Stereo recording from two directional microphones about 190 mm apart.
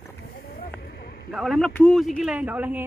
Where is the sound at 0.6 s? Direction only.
55° left (ahead or behind).